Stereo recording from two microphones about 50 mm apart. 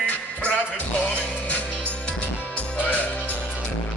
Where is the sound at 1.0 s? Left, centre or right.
Left.